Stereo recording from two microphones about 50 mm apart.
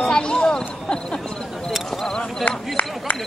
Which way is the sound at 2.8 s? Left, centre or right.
Left.